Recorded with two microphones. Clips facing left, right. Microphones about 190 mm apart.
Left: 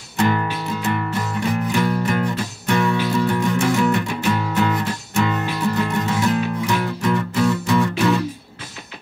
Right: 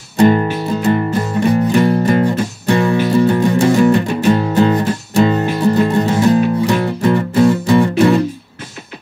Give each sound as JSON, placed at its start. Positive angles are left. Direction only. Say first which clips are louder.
{"t": 0.2, "sound": "music", "louder": "right 9 dB", "side_deg": -35}
{"t": 2.9, "sound": "music", "louder": "right 7 dB", "side_deg": -45}